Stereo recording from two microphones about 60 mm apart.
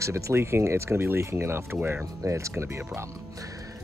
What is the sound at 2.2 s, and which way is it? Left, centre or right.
Speech, right.